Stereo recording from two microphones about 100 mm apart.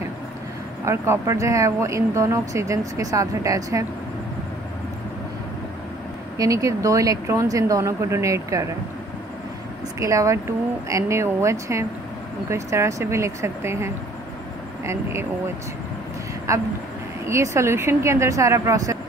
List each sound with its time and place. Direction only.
0.8 s speech: 25° right (ahead or behind)
6.3 s speech: 35° right (ahead or behind)
9.9 s speech: 30° right (ahead or behind)
16.5 s speech: 30° right (ahead or behind)